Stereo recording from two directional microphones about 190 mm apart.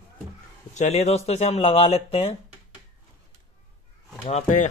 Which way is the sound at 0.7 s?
35° left (ahead or behind).